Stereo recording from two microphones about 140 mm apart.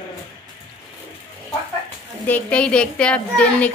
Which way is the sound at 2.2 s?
10° left (ahead or behind).